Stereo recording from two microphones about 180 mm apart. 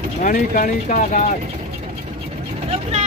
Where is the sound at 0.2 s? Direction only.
45° left (ahead or behind).